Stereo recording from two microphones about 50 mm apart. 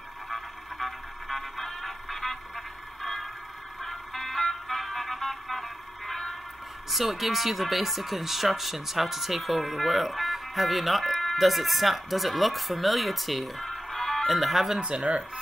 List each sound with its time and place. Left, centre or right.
0.3 s music: centre
6.9 s speech: centre
14.8 s speech: centre